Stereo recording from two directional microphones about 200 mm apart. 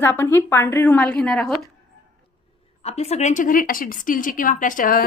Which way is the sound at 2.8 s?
35° left (ahead or behind).